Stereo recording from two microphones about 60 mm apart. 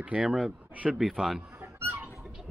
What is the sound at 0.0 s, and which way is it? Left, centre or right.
Speech, centre.